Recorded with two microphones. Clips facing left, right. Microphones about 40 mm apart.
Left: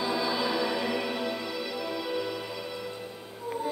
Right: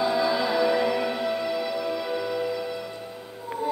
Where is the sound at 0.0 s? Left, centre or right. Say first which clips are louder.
Right 5 dB; centre.